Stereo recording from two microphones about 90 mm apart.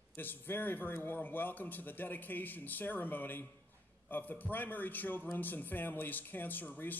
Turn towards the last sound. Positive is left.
turn(degrees=20)  # may be behind; listen again after turning